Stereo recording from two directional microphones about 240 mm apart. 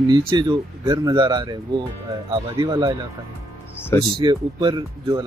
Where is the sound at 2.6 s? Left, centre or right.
Centre.